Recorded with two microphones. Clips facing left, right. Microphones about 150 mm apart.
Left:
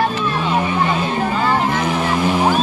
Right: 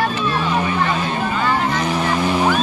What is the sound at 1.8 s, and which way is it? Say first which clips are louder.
Vehicle: left 1 dB; 5° left (ahead or behind).